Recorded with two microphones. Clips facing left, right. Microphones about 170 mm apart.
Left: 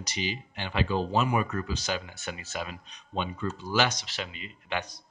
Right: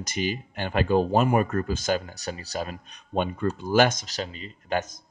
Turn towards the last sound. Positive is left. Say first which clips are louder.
# right 6 dB
turn(degrees=-45)  # may be behind; listen again after turning